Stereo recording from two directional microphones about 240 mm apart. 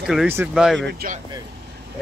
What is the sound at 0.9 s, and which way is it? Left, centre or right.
Speech, right.